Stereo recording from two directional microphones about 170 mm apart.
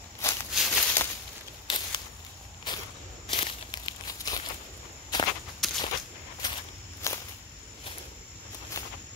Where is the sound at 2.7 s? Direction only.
25° left (ahead or behind).